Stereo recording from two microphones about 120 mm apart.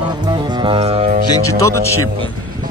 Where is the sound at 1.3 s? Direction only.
25° left (ahead or behind).